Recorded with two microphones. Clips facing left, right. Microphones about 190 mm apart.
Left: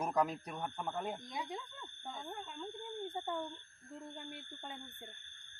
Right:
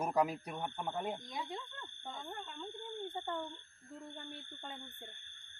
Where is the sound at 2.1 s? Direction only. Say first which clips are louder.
Even; 5° left (ahead or behind).